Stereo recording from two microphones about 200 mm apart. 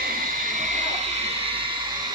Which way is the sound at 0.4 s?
40° right (ahead or behind).